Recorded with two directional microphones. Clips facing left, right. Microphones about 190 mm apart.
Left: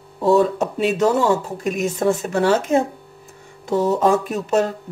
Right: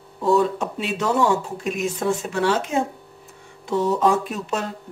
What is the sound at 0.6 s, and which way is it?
Speech, 45° left (ahead or behind).